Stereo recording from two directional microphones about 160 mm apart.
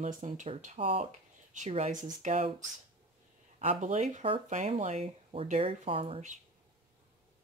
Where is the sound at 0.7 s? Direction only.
35° right (ahead or behind).